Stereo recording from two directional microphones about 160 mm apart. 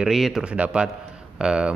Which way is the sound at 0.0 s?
Centre (ahead or behind).